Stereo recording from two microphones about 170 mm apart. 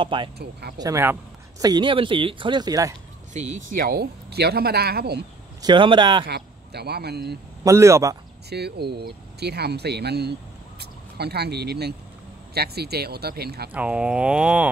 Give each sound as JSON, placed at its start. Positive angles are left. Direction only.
{"t": 0.0, "sound": "speech", "side_deg": -30}
{"t": 0.4, "sound": "speech", "side_deg": -70}
{"t": 0.7, "sound": "speech", "side_deg": -20}
{"t": 3.3, "sound": "speech", "side_deg": -50}
{"t": 5.6, "sound": "speech", "side_deg": -25}
{"t": 6.2, "sound": "a man's voice", "side_deg": -75}
{"t": 7.6, "sound": "speech", "side_deg": -15}
{"t": 8.5, "sound": "speech", "side_deg": -75}
{"t": 13.7, "sound": "speech", "side_deg": -10}